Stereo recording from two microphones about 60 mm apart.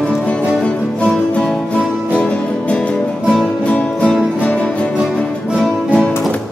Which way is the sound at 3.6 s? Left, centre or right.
Centre.